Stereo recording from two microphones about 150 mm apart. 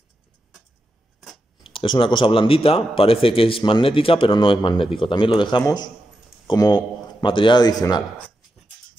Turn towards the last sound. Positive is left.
turn(degrees=25)  # may be behind; listen again after turning